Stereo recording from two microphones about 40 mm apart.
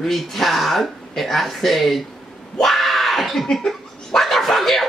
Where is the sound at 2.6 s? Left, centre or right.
Centre.